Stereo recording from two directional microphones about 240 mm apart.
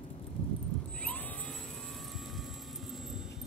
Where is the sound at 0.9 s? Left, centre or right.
Centre.